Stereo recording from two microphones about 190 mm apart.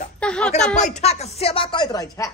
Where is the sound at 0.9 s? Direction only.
35° left (ahead or behind); by 2.3 s 20° left (ahead or behind).